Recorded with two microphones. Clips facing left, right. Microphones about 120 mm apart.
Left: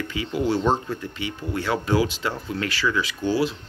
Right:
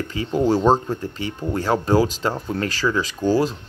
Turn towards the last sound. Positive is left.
turn(degrees=-40)  # may be behind; listen again after turning